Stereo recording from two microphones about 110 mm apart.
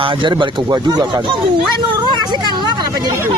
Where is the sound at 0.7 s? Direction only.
30° right (ahead or behind).